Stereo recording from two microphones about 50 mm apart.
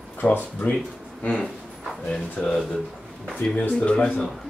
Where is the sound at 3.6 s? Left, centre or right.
Left.